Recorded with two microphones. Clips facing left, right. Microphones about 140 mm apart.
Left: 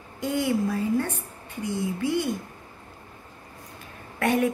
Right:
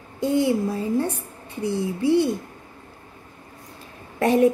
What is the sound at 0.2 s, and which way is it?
A woman's voice, 30° right (ahead or behind).